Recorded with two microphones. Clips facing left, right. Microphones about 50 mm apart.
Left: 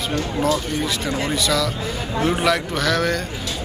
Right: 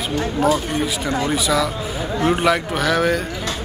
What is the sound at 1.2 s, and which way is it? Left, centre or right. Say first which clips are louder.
Speech: right 2 dB; centre.